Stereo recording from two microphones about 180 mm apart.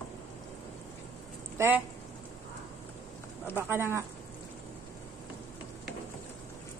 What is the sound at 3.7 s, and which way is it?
Speech, 15° right (ahead or behind).